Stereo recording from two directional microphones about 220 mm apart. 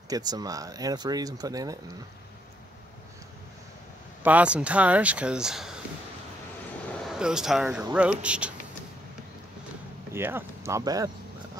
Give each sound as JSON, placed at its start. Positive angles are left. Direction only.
{"t": 0.1, "sound": "speech", "side_deg": -15}
{"t": 4.2, "sound": "speech", "side_deg": -5}
{"t": 7.1, "sound": "speech", "side_deg": -5}
{"t": 10.1, "sound": "speech", "side_deg": -10}